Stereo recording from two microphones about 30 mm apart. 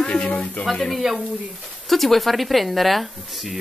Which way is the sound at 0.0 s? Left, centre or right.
Left.